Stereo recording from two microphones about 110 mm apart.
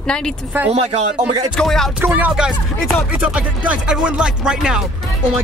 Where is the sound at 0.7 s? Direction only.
70° right (ahead or behind).